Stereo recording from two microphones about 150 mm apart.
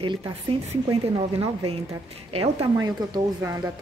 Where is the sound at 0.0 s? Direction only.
35° right (ahead or behind).